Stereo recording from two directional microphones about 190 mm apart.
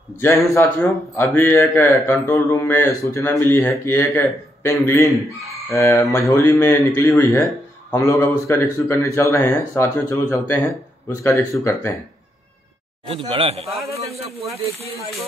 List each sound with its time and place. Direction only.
0.2 s a man's voice: 15° left (ahead or behind)
13.0 s a man's voice: 30° right (ahead or behind)
13.7 s a man's voice: centre (ahead or behind)